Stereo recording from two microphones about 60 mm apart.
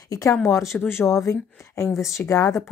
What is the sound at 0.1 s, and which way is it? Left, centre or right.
Speech, left.